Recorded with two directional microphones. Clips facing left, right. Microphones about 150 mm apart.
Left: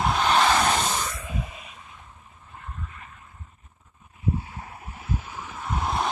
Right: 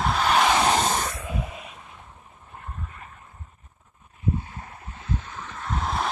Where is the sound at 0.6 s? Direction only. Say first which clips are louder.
Right 2 dB; 30° right (ahead or behind).